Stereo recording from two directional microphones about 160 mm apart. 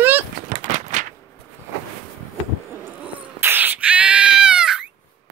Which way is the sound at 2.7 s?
15° right (ahead or behind).